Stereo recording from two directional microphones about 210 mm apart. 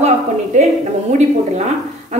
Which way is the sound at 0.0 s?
35° right (ahead or behind).